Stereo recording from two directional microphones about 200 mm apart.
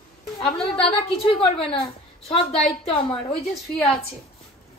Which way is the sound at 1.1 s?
30° left (ahead or behind).